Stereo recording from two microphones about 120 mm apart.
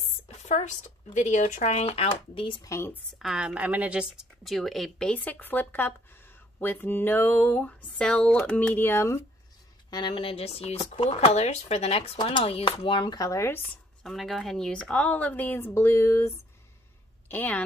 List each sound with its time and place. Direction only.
0.5 s speech: 80° left
2.0 s speech: 45° left (ahead or behind)
2.6 s speech: 20° left (ahead or behind)
3.2 s speech: 5° right (ahead or behind); by 5.9 s 15° left (ahead or behind)
6.6 s a sound: 15° left (ahead or behind)
9.8 s speech: 35° left (ahead or behind); by 12.0 s 60° left (ahead or behind)
12.2 s speech: 45° left (ahead or behind)
13.2 s speech: 25° left (ahead or behind)
14.0 s a sound: centre (ahead or behind)